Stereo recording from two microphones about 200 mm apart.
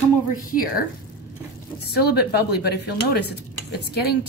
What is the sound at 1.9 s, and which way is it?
Speech, 55° left (ahead or behind).